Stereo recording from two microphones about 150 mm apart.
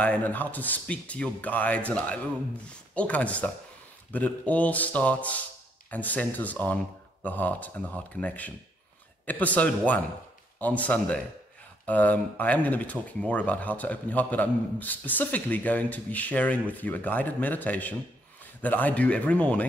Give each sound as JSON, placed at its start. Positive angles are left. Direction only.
{"t": 0.0, "sound": "speech", "side_deg": 10}